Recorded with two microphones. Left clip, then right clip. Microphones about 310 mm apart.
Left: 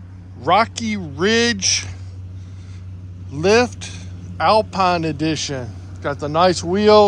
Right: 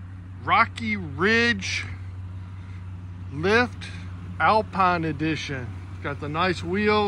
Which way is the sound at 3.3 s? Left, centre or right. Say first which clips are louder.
Left 6 dB; centre.